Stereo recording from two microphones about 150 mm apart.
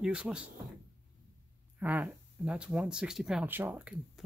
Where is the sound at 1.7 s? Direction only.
10° right (ahead or behind).